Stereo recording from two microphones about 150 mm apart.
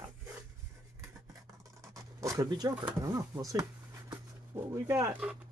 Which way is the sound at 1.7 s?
20° right (ahead or behind).